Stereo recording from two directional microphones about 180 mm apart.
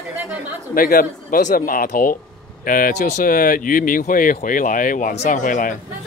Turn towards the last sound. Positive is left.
turn(degrees=50)  # may be behind; listen again after turning